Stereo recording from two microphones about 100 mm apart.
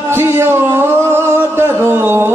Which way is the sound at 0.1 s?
25° right (ahead or behind).